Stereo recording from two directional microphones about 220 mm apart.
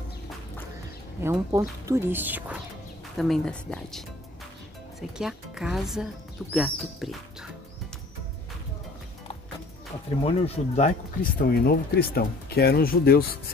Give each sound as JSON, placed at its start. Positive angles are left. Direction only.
{"t": 1.2, "sound": "speech", "side_deg": -15}
{"t": 5.1, "sound": "speech", "side_deg": -5}
{"t": 10.2, "sound": "speech", "side_deg": 25}
{"t": 11.2, "sound": "speech", "side_deg": 40}